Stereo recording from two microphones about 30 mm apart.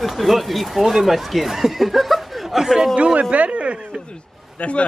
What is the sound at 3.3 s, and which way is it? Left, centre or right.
Speech, right.